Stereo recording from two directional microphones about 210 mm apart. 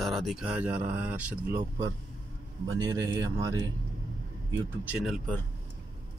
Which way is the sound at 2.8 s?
15° right (ahead or behind).